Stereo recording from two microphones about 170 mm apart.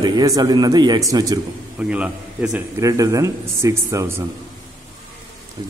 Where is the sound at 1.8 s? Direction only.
5° right (ahead or behind).